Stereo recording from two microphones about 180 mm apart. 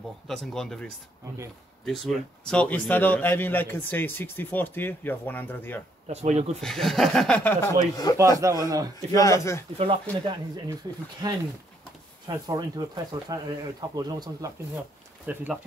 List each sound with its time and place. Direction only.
0.3 s speech: centre (ahead or behind)
1.9 s a man's voice: 5° left (ahead or behind)
6.0 s speech: 35° right (ahead or behind)
6.6 s speech: centre (ahead or behind)
7.9 s a man's voice: 20° left (ahead or behind)
8.4 s speech: 20° right (ahead or behind)
9.1 s a man's voice: 20° left (ahead or behind)
11.2 s speech: 20° right (ahead or behind)
15.2 s speech: 10° right (ahead or behind)